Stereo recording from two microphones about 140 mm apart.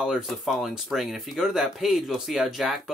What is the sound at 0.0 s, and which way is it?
Speech, centre (ahead or behind).